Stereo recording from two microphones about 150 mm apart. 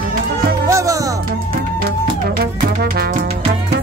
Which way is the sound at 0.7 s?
20° right (ahead or behind).